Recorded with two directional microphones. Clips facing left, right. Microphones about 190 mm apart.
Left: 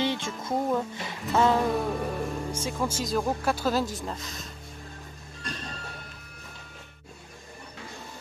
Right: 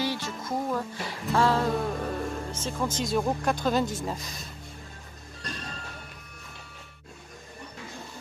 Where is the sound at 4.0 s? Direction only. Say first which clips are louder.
Right 2 dB; 10° right (ahead or behind).